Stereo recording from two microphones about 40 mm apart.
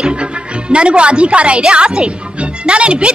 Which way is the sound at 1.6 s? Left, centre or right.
Centre.